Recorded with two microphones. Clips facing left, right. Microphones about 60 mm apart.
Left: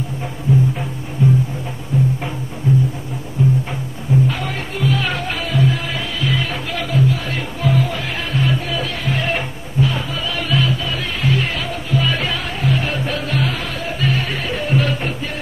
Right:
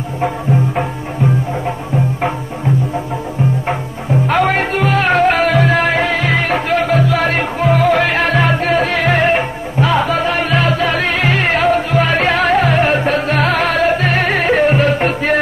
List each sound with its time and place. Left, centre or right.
4.3 s music: right